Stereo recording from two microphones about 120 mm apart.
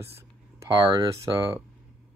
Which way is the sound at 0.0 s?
20° right (ahead or behind).